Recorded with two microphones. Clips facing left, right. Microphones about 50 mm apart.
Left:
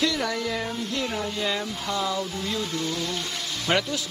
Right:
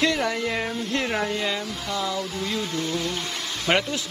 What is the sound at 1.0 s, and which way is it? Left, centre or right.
Speech, right.